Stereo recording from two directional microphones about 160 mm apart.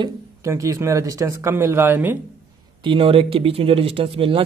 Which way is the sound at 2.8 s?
35° right (ahead or behind).